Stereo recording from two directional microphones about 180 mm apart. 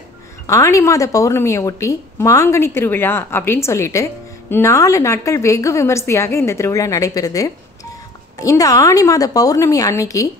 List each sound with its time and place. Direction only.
0.5 s a woman's voice: 15° left (ahead or behind)